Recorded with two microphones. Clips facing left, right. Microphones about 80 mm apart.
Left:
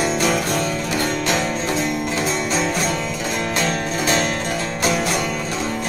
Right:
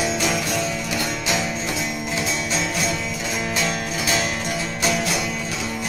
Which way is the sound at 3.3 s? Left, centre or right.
Centre.